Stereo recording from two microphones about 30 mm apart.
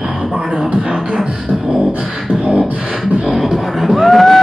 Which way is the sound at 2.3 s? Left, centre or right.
Centre.